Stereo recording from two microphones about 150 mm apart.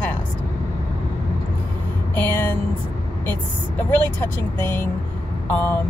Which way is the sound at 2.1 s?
10° left (ahead or behind).